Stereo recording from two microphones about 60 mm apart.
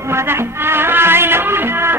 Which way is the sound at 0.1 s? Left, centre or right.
Right.